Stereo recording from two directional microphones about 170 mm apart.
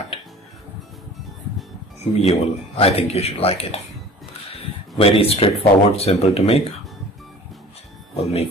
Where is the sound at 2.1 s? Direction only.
35° left (ahead or behind).